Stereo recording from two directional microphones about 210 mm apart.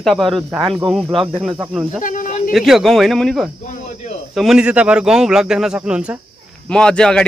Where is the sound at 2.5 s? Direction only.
Centre (ahead or behind).